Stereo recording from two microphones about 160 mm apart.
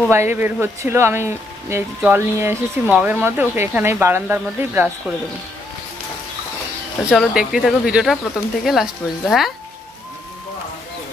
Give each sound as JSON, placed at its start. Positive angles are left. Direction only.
{"t": 0.1, "sound": "speech", "side_deg": -15}
{"t": 7.1, "sound": "speech", "side_deg": -5}